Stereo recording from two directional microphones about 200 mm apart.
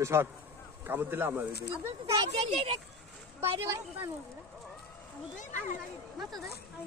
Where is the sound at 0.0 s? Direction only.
10° right (ahead or behind).